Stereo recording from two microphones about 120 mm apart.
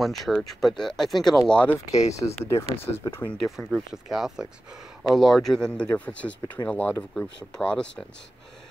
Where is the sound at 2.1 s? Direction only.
25° left (ahead or behind).